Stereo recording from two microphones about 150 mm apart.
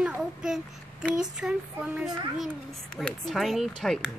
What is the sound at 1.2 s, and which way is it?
A child's voice, 5° right (ahead or behind).